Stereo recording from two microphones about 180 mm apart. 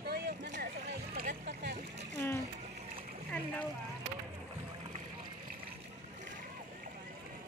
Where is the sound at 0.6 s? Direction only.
60° right (ahead or behind).